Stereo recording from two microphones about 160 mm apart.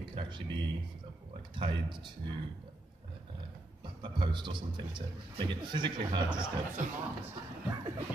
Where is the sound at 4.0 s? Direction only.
30° right (ahead or behind).